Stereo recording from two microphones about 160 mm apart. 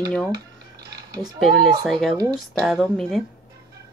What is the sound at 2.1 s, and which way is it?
Speech, 25° right (ahead or behind).